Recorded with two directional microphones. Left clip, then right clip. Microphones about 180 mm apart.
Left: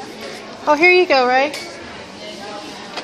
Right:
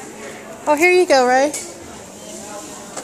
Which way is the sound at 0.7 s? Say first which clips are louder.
Left 2 dB; 10° right (ahead or behind).